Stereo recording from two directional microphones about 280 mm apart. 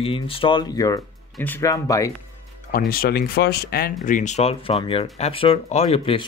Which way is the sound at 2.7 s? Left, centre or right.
Left.